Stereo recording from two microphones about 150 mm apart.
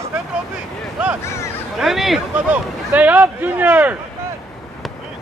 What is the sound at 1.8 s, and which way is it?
A man's voice, centre (ahead or behind).